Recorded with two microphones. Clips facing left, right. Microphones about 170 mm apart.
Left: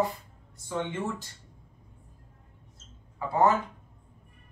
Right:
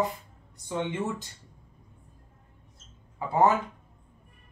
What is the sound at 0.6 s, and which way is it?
Speech, 20° right (ahead or behind).